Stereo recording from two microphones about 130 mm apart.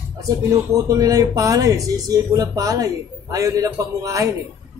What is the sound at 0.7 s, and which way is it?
Speech, 25° right (ahead or behind).